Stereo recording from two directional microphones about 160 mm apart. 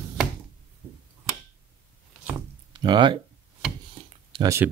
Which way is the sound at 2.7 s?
30° right (ahead or behind).